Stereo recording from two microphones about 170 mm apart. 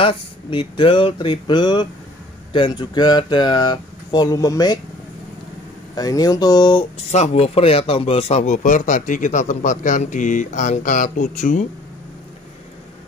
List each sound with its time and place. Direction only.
0.0 s speech: 30° left (ahead or behind)
5.9 s speech: 20° left (ahead or behind)
7.1 s a man's voice: 40° left (ahead or behind)